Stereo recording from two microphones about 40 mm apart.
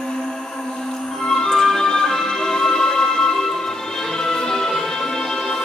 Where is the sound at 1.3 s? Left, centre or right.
Centre.